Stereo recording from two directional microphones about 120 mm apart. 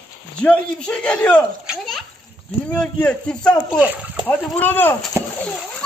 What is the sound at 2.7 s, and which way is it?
Speech, 5° left (ahead or behind).